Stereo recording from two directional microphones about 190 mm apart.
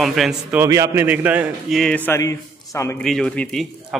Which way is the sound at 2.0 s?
15° left (ahead or behind).